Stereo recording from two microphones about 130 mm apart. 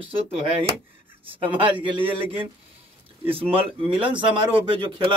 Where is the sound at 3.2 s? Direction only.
45° right (ahead or behind).